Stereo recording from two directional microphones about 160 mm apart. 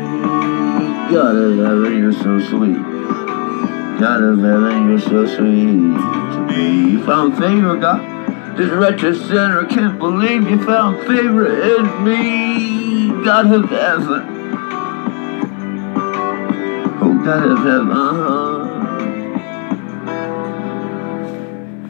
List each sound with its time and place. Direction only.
0.2 s music: 35° left (ahead or behind)
1.2 s speech: 30° left (ahead or behind)
3.6 s music: 35° left (ahead or behind)
6.6 s speech: 30° left (ahead or behind)
16.0 s music: 35° left (ahead or behind)